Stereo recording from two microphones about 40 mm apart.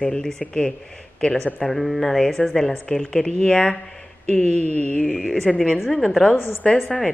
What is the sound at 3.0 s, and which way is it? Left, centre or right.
Speech, left.